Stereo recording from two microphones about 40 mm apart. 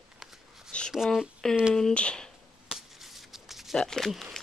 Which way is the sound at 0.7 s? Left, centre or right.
Left.